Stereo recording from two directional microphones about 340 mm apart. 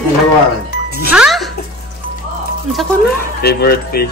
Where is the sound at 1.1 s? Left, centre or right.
Centre.